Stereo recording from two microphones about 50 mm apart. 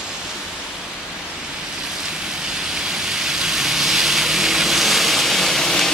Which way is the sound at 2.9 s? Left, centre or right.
Centre.